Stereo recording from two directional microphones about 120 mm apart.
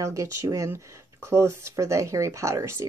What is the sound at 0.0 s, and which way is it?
A woman's voice, 25° right (ahead or behind).